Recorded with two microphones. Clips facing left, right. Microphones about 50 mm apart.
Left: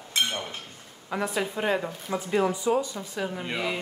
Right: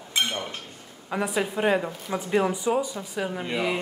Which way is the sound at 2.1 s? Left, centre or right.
Right.